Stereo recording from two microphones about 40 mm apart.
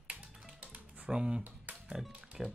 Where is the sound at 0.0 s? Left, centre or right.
Right.